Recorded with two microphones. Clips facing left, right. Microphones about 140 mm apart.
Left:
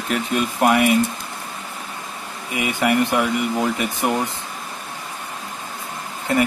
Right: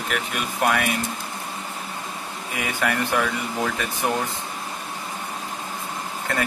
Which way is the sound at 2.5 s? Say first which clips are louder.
Left 6 dB; 20° left (ahead or behind).